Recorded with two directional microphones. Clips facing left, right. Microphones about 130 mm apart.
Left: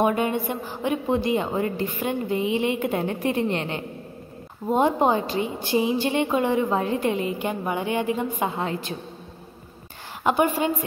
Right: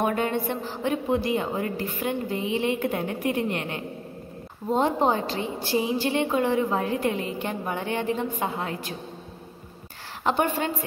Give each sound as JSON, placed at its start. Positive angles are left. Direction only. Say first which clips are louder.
{"t": 0.0, "sound": "a woman's voice", "louder": "left 3 dB", "side_deg": 15}
{"t": 3.0, "sound": "a woman's voice", "louder": "left 2 dB", "side_deg": 30}
{"t": 4.6, "sound": "a woman's voice", "louder": "left 2 dB", "side_deg": 15}
{"t": 8.5, "sound": "a woman's voice", "louder": "left 3 dB", "side_deg": 25}
{"t": 10.2, "sound": "a woman's voice", "louder": "left 3 dB", "side_deg": 10}